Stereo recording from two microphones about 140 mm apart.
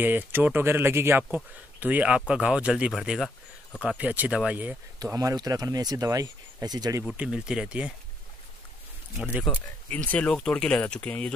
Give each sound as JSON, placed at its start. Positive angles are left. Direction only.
{"t": 0.0, "sound": "speech", "side_deg": -15}
{"t": 4.9, "sound": "speech", "side_deg": -25}
{"t": 7.1, "sound": "speech", "side_deg": -5}
{"t": 9.1, "sound": "speech", "side_deg": 0}
{"t": 9.5, "sound": "speech", "side_deg": 10}